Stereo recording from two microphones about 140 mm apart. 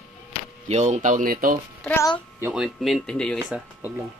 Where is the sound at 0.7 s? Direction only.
55° right (ahead or behind); by 1.5 s 75° right (ahead or behind).